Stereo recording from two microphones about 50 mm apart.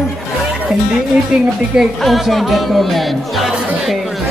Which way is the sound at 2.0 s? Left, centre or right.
Centre.